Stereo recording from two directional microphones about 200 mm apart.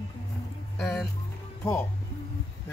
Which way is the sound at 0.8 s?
Centre (ahead or behind).